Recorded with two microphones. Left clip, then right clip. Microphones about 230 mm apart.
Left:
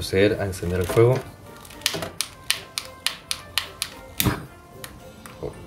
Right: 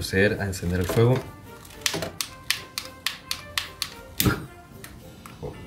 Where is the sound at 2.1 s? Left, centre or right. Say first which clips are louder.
Left 2 dB; centre.